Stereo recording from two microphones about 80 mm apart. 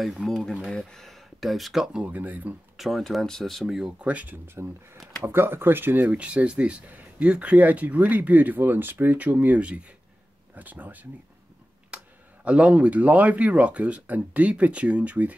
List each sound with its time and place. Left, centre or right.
0.0 s speech: centre; by 2.5 s right
2.8 s speech: centre
4.0 s speech: centre
6.1 s speech: centre
11.9 s clicking: centre
12.4 s speech: centre